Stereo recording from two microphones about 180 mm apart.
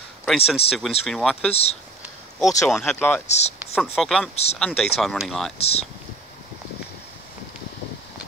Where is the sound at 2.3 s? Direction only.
Centre (ahead or behind).